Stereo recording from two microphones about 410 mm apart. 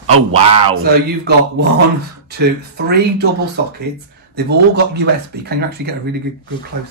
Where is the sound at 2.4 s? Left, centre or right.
Right.